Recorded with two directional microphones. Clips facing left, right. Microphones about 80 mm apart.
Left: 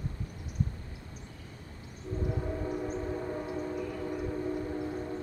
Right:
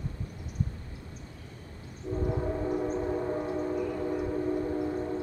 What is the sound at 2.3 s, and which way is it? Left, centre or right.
Train, right.